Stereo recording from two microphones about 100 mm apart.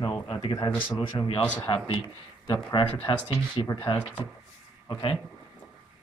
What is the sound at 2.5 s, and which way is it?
Speech, 50° left (ahead or behind).